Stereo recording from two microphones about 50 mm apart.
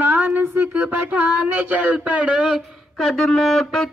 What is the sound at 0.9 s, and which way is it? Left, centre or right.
Speech, right.